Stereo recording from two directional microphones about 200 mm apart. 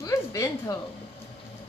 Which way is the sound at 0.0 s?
15° left (ahead or behind).